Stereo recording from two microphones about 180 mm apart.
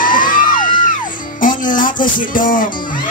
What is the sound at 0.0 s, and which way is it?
Music, 50° left (ahead or behind).